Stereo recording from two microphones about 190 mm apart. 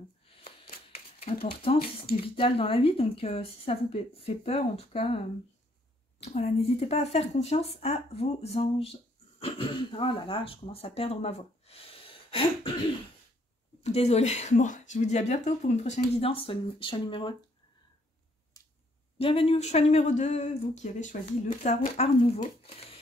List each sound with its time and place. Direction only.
0.4 s shuffling cards: 30° left (ahead or behind)
2.0 s speech: 30° left (ahead or behind)
13.8 s speech: 35° left (ahead or behind)
19.1 s speech: 30° left (ahead or behind)